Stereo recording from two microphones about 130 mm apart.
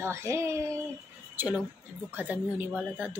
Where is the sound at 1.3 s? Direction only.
15° right (ahead or behind).